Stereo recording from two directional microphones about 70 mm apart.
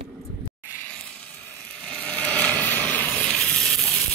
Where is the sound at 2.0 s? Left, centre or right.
Centre.